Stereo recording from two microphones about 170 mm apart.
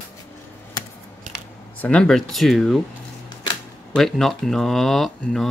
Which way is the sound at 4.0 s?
Centre (ahead or behind).